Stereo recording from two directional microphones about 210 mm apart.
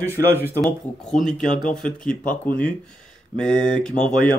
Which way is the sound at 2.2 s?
40° left (ahead or behind).